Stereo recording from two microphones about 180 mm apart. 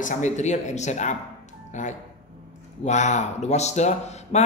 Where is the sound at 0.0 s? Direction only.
40° left (ahead or behind).